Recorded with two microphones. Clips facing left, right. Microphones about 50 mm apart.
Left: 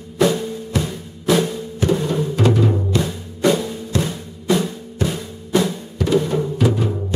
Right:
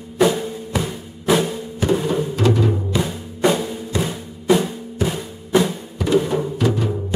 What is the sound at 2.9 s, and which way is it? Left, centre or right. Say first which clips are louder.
Music: left 1 dB; centre.